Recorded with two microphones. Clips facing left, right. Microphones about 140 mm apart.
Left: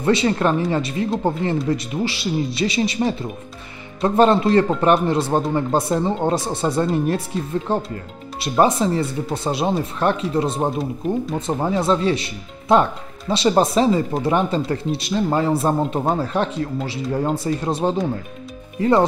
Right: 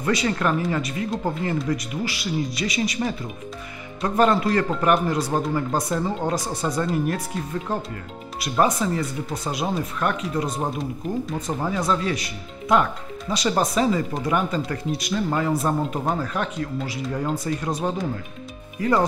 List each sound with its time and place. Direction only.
0.0 s speech: 30° left (ahead or behind)